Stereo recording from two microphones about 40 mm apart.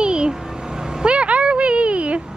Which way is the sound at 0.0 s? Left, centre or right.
Right.